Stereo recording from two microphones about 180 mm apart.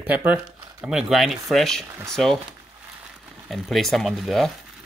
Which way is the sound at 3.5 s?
Centre (ahead or behind).